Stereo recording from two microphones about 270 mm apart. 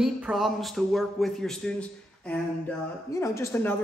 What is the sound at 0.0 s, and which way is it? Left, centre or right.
A man's voice, centre.